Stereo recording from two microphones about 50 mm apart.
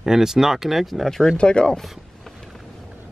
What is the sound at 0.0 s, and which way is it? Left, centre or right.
Speech, centre.